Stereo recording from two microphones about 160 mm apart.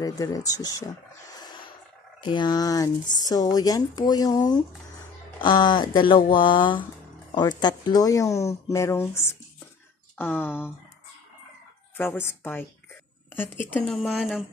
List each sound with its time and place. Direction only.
0.0 s speech: 20° left (ahead or behind)
12.0 s speech: 15° left (ahead or behind)
13.8 s speech: centre (ahead or behind)